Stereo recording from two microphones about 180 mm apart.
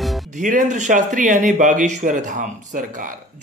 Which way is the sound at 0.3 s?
45° right (ahead or behind).